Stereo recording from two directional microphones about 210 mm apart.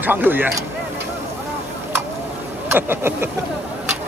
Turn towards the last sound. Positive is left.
turn(degrees=-10)  # may be behind; listen again after turning